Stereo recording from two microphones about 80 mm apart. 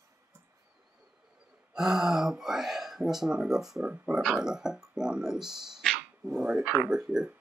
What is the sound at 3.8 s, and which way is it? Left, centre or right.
Speech, right.